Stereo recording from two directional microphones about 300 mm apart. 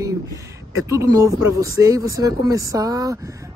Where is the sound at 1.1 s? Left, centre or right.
Centre.